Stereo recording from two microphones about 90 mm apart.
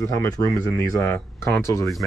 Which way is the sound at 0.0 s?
35° left (ahead or behind).